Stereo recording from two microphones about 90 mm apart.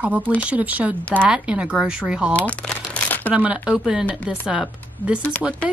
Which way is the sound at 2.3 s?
15° left (ahead or behind).